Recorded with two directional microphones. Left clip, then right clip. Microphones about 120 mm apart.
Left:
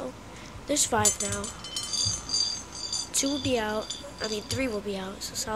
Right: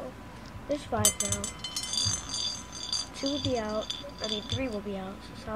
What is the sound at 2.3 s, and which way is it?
Music, 90° right.